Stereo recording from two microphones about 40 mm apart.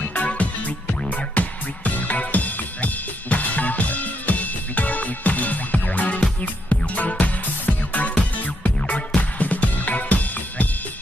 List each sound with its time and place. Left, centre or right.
0.2 s music: left
8.2 s music: left